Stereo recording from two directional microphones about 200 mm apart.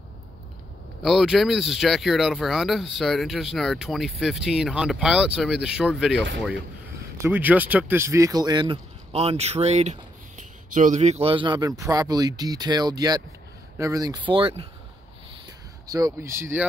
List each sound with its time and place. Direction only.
1.0 s speech: centre (ahead or behind); by 14.7 s 25° right (ahead or behind)
15.9 s speech: 15° right (ahead or behind)